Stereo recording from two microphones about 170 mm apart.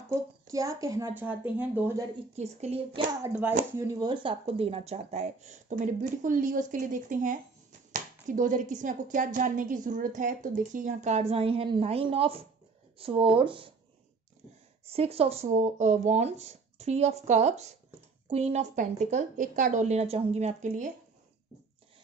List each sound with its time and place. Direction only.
0.1 s a woman's voice: 20° right (ahead or behind)
2.3 s speech: 40° right (ahead or behind)
3.7 s speech: 20° right (ahead or behind)
14.9 s speech: 35° right (ahead or behind)